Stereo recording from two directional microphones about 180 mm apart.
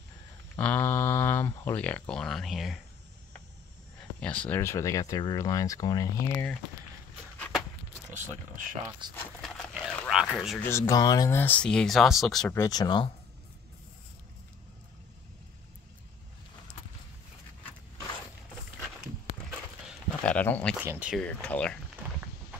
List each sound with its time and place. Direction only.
0.6 s speech: 10° left (ahead or behind)
4.2 s speech: 5° left (ahead or behind)
7.3 s a sound: 5° left (ahead or behind)
8.1 s speech: 45° right (ahead or behind)
9.1 s a sound: 5° left (ahead or behind)
10.3 s speech: centre (ahead or behind)
10.6 s speech: 15° left (ahead or behind)
12.5 s speech: 20° left (ahead or behind)
20.2 s a sound: 10° left (ahead or behind)
20.7 s speech: 10° right (ahead or behind)
21.2 s speech: 5° left (ahead or behind)